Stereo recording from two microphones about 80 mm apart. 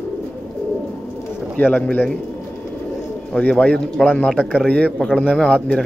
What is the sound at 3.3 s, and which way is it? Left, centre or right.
Speech, centre.